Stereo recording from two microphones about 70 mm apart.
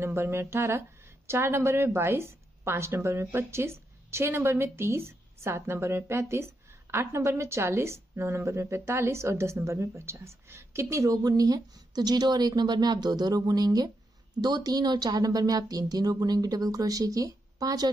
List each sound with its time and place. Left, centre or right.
0.0 s a woman's voice: right
14.4 s speech: right